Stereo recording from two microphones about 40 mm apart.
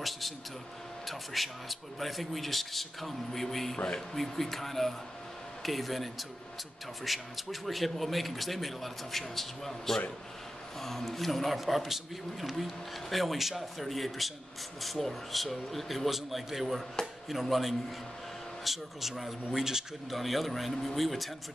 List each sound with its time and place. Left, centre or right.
1.0 s a man's voice: centre
3.7 s speech: centre
4.2 s a man's voice: centre
17.0 s chopping: centre
18.6 s a man's voice: centre
20.1 s a man's voice: centre